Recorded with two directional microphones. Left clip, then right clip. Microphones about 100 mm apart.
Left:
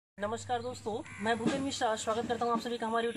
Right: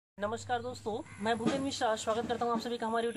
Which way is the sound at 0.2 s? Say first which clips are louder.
Even; 25° right (ahead or behind).